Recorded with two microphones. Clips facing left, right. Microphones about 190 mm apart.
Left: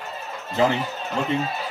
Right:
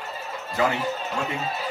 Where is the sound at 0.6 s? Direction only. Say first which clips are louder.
Left 3 dB; 25° left (ahead or behind).